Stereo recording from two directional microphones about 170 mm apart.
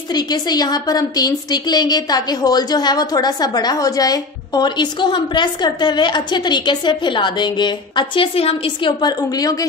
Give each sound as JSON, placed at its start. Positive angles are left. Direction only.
{"t": 0.1, "sound": "a woman's voice", "side_deg": 25}